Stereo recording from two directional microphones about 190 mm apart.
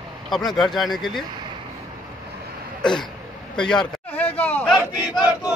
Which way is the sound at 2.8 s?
5° left (ahead or behind).